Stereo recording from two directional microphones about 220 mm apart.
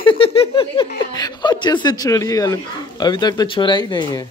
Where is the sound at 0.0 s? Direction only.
25° left (ahead or behind).